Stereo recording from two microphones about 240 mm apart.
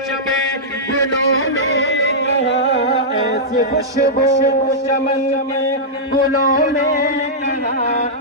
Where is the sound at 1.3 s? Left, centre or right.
Left.